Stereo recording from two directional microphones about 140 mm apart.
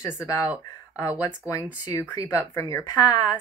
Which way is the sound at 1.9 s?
25° left (ahead or behind).